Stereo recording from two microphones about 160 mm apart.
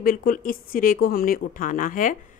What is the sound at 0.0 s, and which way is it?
Speech, 65° left (ahead or behind).